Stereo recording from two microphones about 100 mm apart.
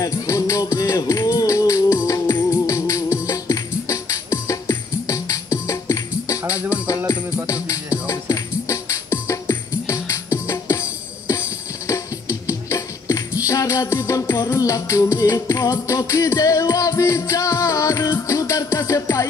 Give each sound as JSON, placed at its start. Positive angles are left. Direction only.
{"t": 0.0, "sound": "music", "side_deg": 30}